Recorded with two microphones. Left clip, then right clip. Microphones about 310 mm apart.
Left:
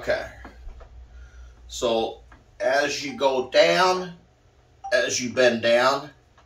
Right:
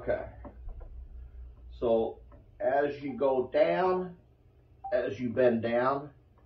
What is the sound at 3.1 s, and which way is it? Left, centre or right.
Speech, centre.